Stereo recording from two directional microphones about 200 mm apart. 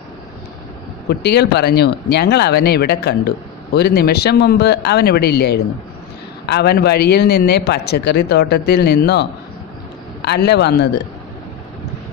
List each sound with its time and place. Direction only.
1.0 s a man's voice: 55° left (ahead or behind)